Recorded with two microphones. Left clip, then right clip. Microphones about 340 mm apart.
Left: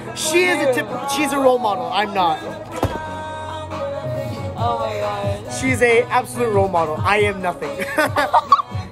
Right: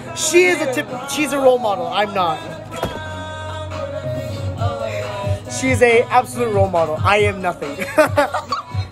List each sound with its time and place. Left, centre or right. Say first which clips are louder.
0.3 s speech: right 1 dB; centre
5.6 s speech: right 2 dB; centre
8.3 s music: left 9 dB; centre